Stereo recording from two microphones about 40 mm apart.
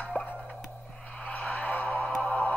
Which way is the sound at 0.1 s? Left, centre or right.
Left.